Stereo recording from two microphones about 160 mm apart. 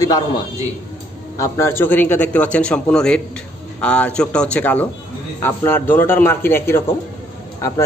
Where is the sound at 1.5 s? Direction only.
15° left (ahead or behind).